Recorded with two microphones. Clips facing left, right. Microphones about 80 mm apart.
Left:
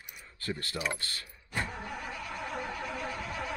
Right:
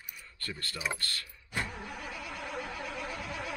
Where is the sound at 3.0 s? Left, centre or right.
Centre.